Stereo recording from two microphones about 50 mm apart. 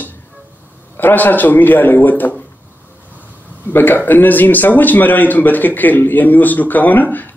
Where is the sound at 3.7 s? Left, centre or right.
Left.